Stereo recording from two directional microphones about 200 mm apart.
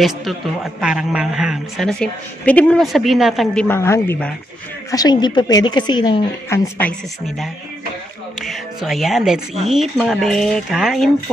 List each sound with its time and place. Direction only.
0.0 s a man's voice: centre (ahead or behind)
3.6 s a woman's voice: 10° left (ahead or behind)
8.4 s music: centre (ahead or behind)
9.7 s a man's voice: centre (ahead or behind)